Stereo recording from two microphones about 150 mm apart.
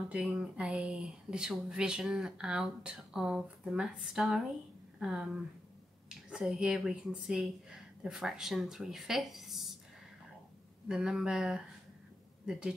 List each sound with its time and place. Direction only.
0.1 s speech: 5° right (ahead or behind)
10.9 s a woman's voice: 5° right (ahead or behind)